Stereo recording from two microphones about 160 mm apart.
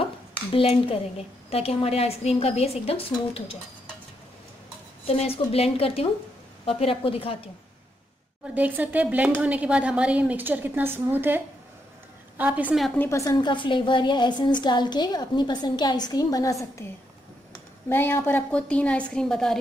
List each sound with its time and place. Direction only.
0.0 s a woman's voice: 35° left (ahead or behind)
5.0 s a woman's voice: 40° left (ahead or behind)
8.5 s speech: 10° right (ahead or behind)
12.8 s a woman's voice: 5° left (ahead or behind)
13.1 s a woman's voice: 20° left (ahead or behind)
17.8 s a woman's voice: 15° left (ahead or behind)